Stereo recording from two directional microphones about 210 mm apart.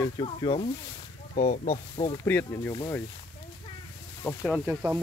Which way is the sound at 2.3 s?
10° left (ahead or behind).